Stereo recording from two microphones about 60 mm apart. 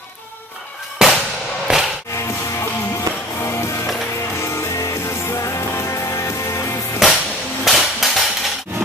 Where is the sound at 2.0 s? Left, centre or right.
Left.